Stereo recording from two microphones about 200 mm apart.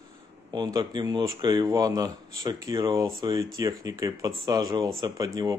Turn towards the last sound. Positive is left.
turn(degrees=-20)  # may be behind; listen again after turning